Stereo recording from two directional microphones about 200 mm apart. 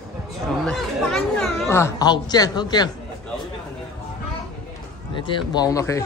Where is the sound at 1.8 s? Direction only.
20° left (ahead or behind).